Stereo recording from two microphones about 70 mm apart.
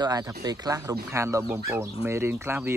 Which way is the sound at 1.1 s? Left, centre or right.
Right.